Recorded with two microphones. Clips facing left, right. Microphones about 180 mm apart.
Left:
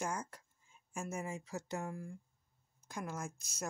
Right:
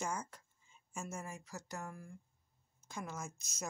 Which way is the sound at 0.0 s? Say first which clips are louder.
Left 1 dB; 10° left (ahead or behind).